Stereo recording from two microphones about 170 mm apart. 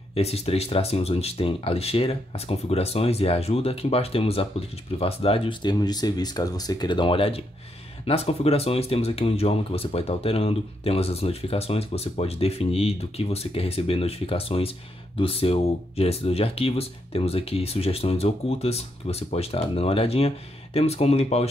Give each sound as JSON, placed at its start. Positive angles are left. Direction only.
{"t": 0.1, "sound": "speech", "side_deg": 35}